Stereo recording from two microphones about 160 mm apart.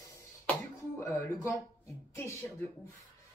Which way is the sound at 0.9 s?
20° left (ahead or behind).